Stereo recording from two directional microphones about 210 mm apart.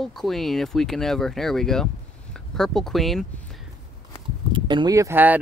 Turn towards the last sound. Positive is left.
turn(degrees=-10)  # may be behind; listen again after turning